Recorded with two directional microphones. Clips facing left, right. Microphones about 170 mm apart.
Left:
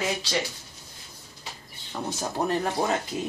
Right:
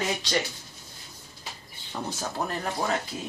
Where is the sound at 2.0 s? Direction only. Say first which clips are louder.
Left 4 dB; 20° left (ahead or behind).